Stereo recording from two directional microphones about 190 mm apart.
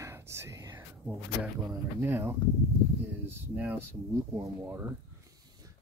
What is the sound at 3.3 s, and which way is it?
Speech, 10° right (ahead or behind).